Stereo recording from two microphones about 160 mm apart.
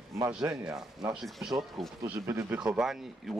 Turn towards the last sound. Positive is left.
turn(degrees=0)  # may be behind; listen again after turning